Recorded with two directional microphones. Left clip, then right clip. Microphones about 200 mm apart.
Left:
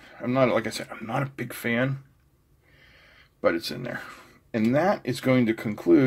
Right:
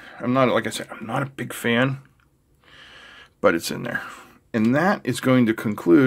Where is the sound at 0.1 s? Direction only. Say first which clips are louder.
Right 3 dB; 25° right (ahead or behind).